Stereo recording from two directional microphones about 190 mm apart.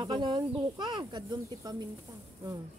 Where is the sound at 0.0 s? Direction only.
25° right (ahead or behind).